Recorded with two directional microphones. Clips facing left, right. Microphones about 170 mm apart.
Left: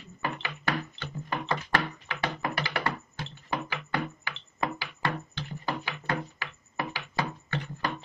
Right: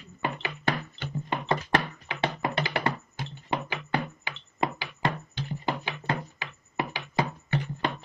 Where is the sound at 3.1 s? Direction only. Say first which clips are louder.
Right 2 dB; 20° right (ahead or behind).